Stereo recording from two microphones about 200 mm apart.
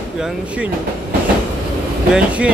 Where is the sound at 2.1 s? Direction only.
5° right (ahead or behind).